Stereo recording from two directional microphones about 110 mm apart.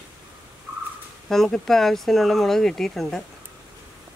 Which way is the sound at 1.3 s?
5° left (ahead or behind).